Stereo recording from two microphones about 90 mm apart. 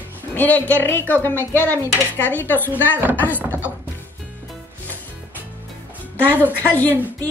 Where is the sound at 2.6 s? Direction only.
20° right (ahead or behind).